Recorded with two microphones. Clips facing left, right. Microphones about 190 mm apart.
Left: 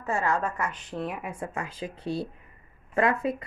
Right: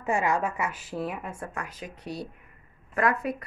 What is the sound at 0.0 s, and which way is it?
A woman's voice, 15° right (ahead or behind).